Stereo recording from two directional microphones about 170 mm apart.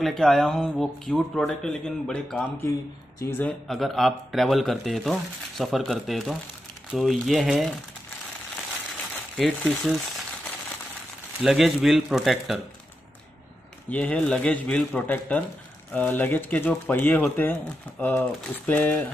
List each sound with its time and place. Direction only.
0.0 s speech: 5° left (ahead or behind)
3.6 s speech: centre (ahead or behind)
9.4 s speech: centre (ahead or behind)
11.4 s speech: centre (ahead or behind)
13.8 s speech: 10° left (ahead or behind)